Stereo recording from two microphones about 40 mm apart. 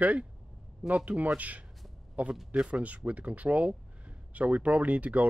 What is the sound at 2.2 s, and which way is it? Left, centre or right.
A man's voice, right.